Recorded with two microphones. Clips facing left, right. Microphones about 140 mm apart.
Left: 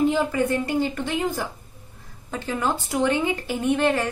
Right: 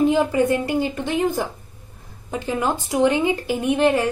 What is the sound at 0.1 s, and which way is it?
A woman's voice, 15° right (ahead or behind).